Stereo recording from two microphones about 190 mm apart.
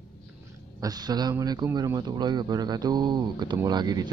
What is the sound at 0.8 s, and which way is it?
A man's voice, 20° right (ahead or behind).